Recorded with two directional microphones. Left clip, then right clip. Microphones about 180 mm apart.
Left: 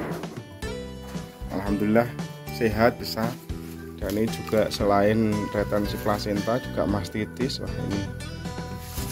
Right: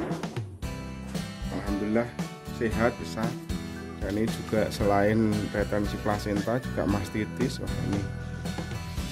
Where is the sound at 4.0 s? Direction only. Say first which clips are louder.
Left 3 dB; 5° right (ahead or behind).